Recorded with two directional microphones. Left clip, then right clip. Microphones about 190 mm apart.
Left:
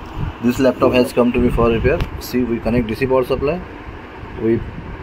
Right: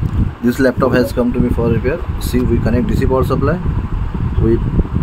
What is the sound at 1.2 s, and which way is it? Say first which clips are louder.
Speech: left 2 dB; 10° right (ahead or behind).